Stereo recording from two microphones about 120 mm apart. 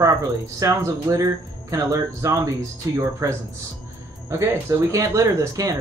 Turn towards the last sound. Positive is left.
turn(degrees=-30)  # may be behind; listen again after turning